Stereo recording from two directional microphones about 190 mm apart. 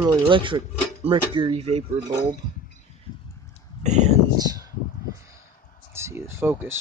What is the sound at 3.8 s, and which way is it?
Speech, 35° right (ahead or behind).